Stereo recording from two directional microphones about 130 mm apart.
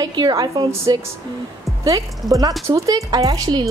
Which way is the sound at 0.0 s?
30° right (ahead or behind).